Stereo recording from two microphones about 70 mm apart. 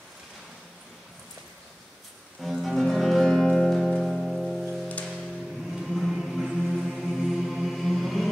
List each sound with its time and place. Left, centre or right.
2.4 s music: centre
5.7 s music: centre